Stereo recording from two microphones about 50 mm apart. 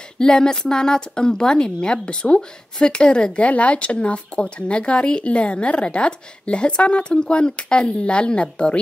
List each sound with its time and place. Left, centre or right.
0.2 s speech: centre